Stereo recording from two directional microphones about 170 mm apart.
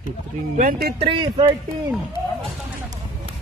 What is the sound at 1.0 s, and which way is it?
Speech, 30° right (ahead or behind).